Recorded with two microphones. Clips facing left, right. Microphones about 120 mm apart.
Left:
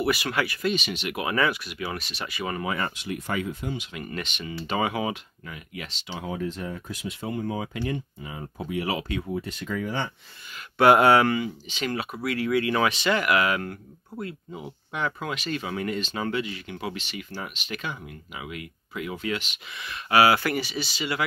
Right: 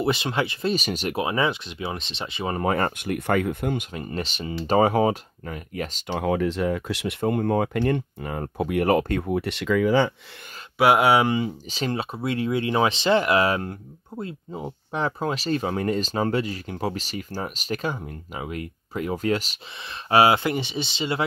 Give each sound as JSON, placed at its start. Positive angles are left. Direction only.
{"t": 0.0, "sound": "speech", "side_deg": -25}
{"t": 0.7, "sound": "speech", "side_deg": -40}
{"t": 1.1, "sound": "speech", "side_deg": -25}
{"t": 2.6, "sound": "speech", "side_deg": -45}
{"t": 3.9, "sound": "speech", "side_deg": -35}
{"t": 10.8, "sound": "speech", "side_deg": -5}
{"t": 11.3, "sound": "speech", "side_deg": -35}